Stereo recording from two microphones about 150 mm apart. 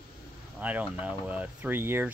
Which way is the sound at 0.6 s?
10° right (ahead or behind).